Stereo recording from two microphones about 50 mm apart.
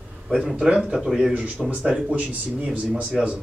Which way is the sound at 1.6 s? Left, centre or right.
Right.